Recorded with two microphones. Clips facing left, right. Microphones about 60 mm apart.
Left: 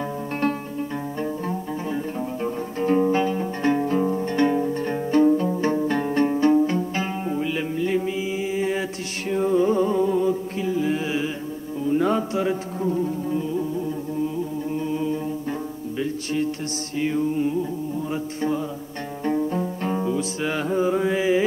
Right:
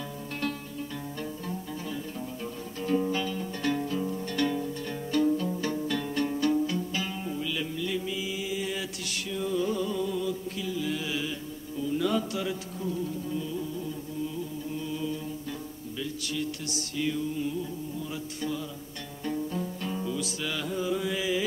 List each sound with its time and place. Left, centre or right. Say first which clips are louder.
1.2 s music: left 9 dB; left
9.3 s mantra: left 10 dB; left
11.8 s music: left 6 dB; left
14.9 s chant: left 7 dB; left
16.9 s music: left 7 dB; left
18.1 s mantra: left 9 dB; left
19.2 s music: left 8 dB; left